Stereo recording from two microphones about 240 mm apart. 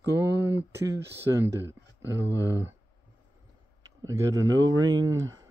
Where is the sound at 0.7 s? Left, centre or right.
Centre.